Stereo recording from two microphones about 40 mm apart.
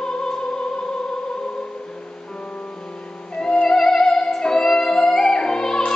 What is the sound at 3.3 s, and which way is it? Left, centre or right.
Music, left.